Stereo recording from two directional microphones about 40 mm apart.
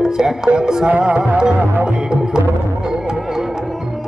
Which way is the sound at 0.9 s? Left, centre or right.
Right.